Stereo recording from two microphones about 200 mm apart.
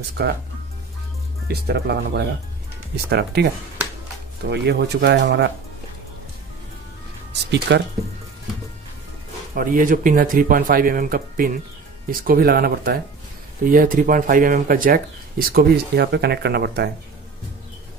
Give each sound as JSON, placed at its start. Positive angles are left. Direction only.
{"t": 0.2, "sound": "speech", "side_deg": -55}
{"t": 1.5, "sound": "speech", "side_deg": -55}
{"t": 7.7, "sound": "speech", "side_deg": -60}
{"t": 9.6, "sound": "speech", "side_deg": -40}